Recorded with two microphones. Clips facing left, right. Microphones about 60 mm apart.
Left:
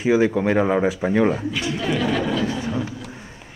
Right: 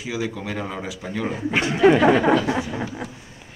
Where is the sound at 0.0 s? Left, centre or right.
Left.